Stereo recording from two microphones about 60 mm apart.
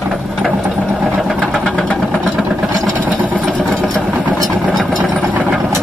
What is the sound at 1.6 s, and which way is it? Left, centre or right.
Vehicle, centre.